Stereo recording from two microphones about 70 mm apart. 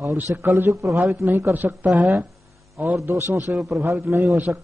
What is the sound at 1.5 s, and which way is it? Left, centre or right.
Speech, right.